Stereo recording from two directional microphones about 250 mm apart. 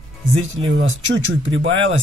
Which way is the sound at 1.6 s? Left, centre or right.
Right.